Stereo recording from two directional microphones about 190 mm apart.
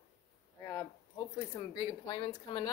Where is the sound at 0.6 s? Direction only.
15° left (ahead or behind).